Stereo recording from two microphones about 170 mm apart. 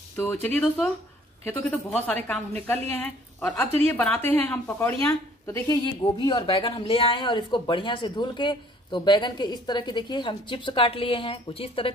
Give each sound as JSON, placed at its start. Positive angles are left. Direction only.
{"t": 0.1, "sound": "a woman's voice", "side_deg": 15}
{"t": 5.9, "sound": "speech", "side_deg": 25}